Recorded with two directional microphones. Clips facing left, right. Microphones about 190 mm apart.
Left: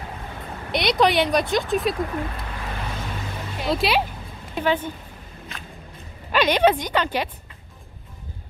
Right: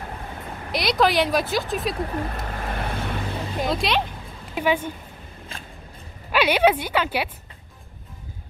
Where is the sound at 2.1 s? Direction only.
45° right (ahead or behind).